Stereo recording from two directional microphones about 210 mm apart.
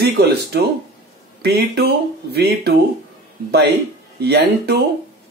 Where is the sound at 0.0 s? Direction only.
50° right (ahead or behind).